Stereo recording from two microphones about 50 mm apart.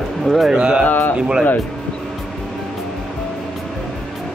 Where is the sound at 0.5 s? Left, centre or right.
Centre.